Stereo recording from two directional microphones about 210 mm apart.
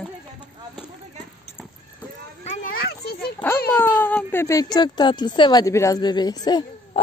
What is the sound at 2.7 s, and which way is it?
Children playing, 45° left (ahead or behind).